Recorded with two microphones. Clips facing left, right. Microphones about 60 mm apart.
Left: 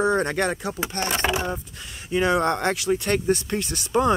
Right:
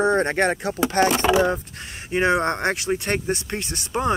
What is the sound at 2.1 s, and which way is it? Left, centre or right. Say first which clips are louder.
Speech: right 1 dB; right.